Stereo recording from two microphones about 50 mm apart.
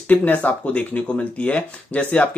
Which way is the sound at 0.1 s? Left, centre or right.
Left.